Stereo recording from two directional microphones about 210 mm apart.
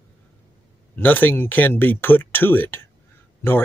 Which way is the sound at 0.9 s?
10° left (ahead or behind).